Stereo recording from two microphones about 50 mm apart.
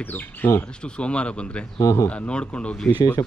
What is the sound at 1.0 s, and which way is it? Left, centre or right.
Speech, left.